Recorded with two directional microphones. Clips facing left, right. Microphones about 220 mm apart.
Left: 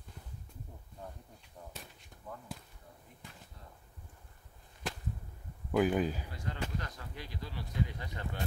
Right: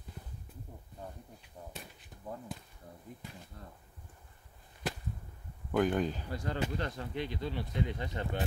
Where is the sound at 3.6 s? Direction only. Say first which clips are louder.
Right 6 dB; 50° right (ahead or behind).